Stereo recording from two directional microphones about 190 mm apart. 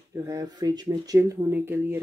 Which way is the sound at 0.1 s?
15° right (ahead or behind).